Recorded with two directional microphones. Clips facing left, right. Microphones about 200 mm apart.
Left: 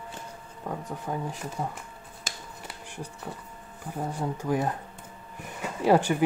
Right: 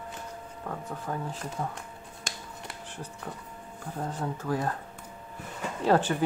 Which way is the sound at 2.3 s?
Centre (ahead or behind).